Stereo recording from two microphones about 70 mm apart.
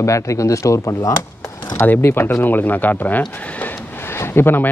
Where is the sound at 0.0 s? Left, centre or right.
Left.